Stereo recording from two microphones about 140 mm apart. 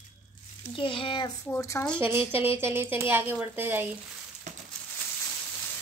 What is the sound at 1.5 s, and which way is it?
Speech, 20° left (ahead or behind).